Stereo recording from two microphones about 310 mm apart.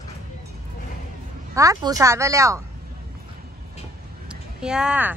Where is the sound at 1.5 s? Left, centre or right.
Centre.